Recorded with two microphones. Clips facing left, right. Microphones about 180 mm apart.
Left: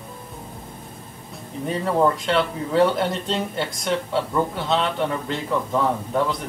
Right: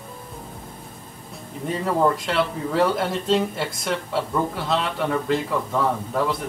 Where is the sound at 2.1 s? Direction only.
Centre (ahead or behind).